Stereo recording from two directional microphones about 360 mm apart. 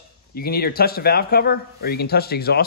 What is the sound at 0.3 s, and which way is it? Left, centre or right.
Speech, left.